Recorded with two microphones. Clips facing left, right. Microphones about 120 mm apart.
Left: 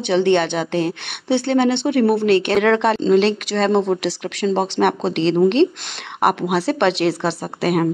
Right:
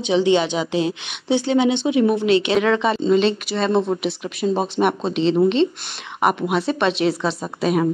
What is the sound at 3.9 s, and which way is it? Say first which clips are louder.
Speech: left 2 dB; 70° left (ahead or behind).